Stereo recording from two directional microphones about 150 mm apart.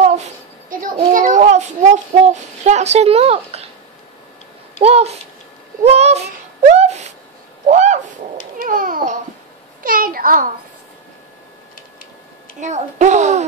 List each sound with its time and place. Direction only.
0.0 s a sound: 50° right (ahead or behind)
1.1 s a child's voice: 55° right (ahead or behind)
4.7 s a child's voice: 45° right (ahead or behind)
5.9 s a sound: 45° right (ahead or behind)
8.5 s babbling: 70° right (ahead or behind)
9.8 s babbling: 75° right (ahead or behind)
12.5 s a child's voice: 50° right (ahead or behind)